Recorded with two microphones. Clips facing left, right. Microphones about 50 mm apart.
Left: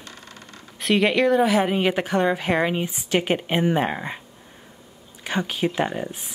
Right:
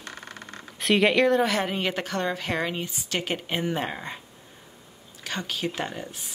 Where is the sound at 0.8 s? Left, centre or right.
Centre.